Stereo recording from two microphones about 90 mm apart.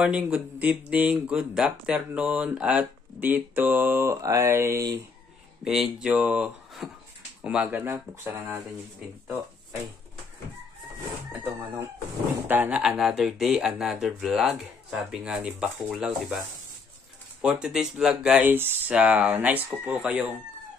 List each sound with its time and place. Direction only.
0.0 s speech: 10° right (ahead or behind)
4.2 s mantra: 35° right (ahead or behind)
5.6 s speech: 5° right (ahead or behind)
6.8 s a sound: centre (ahead or behind)
7.4 s speech: 15° right (ahead or behind)
7.9 s speech: 30° right (ahead or behind)
12.4 s speech: 20° right (ahead or behind)
12.8 s speech: 5° right (ahead or behind)
17.4 s speech: 10° right (ahead or behind)
18.5 s speech: 20° right (ahead or behind)
18.9 s speech: 10° right (ahead or behind)